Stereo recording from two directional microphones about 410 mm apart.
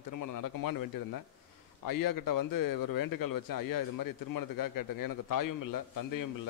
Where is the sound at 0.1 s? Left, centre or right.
Left.